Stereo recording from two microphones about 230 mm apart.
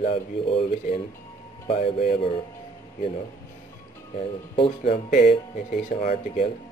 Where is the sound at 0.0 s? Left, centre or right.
Left.